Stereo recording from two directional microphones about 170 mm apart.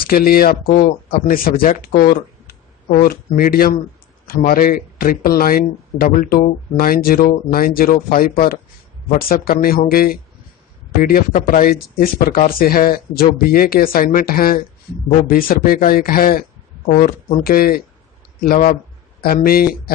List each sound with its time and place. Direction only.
0.0 s a man's voice: 60° left (ahead or behind)